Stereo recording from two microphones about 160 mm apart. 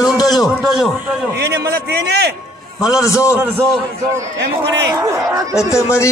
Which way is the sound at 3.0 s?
20° left (ahead or behind).